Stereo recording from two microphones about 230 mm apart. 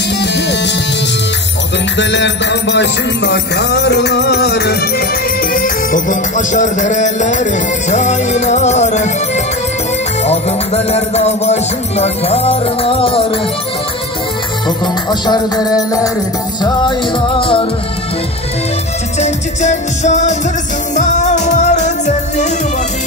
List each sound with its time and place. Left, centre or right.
2.0 s music: left
10.2 s music: left
15.0 s music: centre
17.4 s music: left
19.1 s music: left